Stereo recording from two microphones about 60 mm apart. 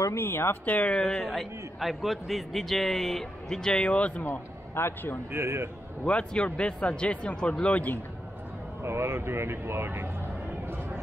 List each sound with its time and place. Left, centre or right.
0.1 s speech: left
0.7 s speech: left
0.9 s a man's voice: centre
3.9 s speech: left
4.3 s a man's voice: left
5.3 s speech: right
6.0 s speech: centre
8.8 s speech: right
10.7 s a sound: right